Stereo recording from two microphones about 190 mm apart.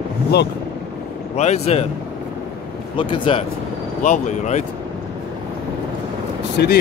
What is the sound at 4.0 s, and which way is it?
Speech, 40° left (ahead or behind).